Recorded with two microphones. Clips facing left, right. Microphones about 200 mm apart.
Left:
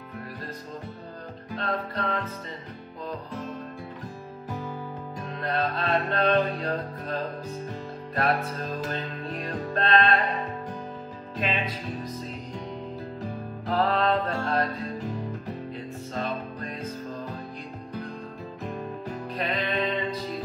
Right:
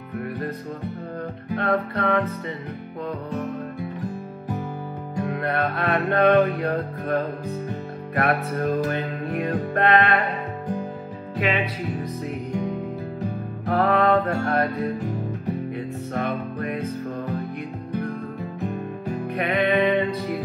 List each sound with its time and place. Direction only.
1.5 s music: 65° right (ahead or behind)
5.2 s music: 60° right (ahead or behind)
11.3 s music: 70° right (ahead or behind)
13.2 s music: 65° right (ahead or behind)
18.7 s music: 65° right (ahead or behind)